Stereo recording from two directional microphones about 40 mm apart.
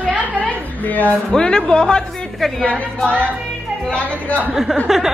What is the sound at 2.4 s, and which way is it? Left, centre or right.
Speech, centre.